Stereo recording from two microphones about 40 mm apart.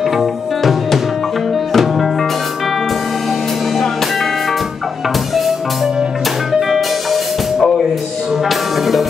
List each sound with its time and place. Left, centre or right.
0.0 s music: centre
3.7 s music: centre
6.7 s music: centre